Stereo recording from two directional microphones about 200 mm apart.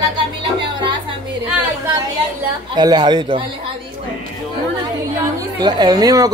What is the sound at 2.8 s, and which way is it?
Speech, 20° right (ahead or behind).